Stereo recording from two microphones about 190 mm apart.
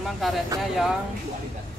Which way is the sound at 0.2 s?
Centre (ahead or behind).